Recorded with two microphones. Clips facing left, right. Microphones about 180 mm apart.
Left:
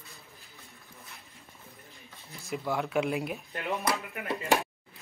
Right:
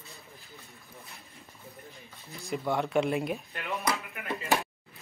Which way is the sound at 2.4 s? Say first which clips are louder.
Right 2 dB; centre (ahead or behind).